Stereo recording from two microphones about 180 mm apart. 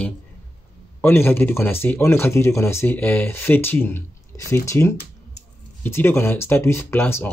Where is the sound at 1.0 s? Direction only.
10° left (ahead or behind).